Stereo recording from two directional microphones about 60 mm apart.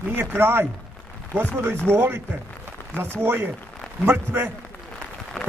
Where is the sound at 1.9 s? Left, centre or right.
Right.